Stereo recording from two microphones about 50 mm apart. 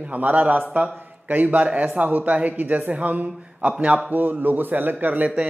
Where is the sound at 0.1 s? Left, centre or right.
Right.